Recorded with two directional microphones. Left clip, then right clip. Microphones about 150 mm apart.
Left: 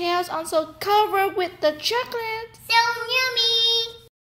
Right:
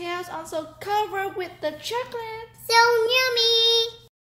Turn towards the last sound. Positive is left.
turn(degrees=-65)  # may be behind; listen again after turning